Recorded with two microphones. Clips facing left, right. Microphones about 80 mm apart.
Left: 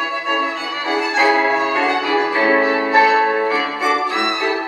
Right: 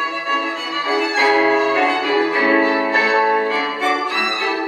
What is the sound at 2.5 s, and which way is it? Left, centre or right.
Music, centre.